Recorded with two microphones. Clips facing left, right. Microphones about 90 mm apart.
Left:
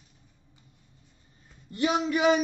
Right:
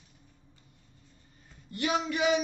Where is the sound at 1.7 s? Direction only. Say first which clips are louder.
Left 4 dB; 35° left (ahead or behind).